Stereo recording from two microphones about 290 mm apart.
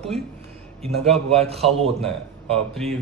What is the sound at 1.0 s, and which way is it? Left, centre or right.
A man's voice, centre.